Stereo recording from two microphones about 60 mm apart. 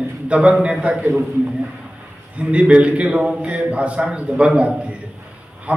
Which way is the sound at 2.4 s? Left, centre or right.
Centre.